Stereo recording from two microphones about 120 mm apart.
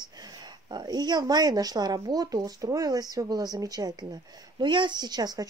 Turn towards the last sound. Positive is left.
turn(degrees=-35)  # may be behind; listen again after turning